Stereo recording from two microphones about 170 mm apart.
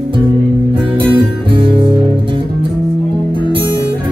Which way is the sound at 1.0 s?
30° right (ahead or behind).